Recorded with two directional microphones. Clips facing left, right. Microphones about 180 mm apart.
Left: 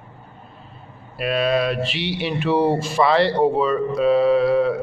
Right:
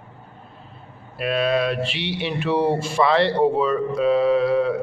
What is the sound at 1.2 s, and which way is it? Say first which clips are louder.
Speech: left 1 dB; 5° left (ahead or behind).